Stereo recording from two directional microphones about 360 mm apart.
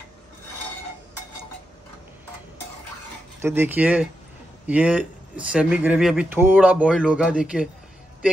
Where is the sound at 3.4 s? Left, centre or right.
Centre.